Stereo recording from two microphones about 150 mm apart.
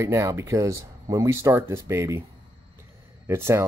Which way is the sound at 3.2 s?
15° right (ahead or behind).